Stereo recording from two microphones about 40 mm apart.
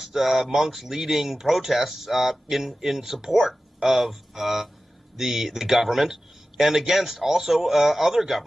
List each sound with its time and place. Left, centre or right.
0.0 s speech: centre